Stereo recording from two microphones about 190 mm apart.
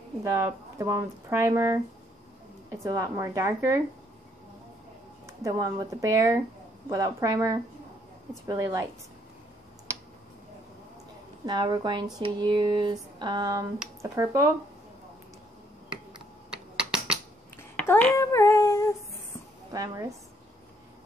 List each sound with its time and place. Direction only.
0.2 s speech: 15° right (ahead or behind)
5.2 s speech: 15° right (ahead or behind)
11.4 s speech: 25° right (ahead or behind)
16.1 s a sound: 5° right (ahead or behind)
17.7 s a sound: 10° left (ahead or behind)
19.7 s a woman's voice: 20° right (ahead or behind)